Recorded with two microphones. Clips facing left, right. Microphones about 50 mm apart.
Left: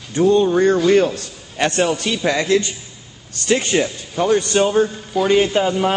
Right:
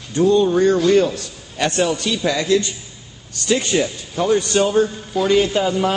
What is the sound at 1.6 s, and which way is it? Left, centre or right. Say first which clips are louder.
A man's voice: left 1 dB; left.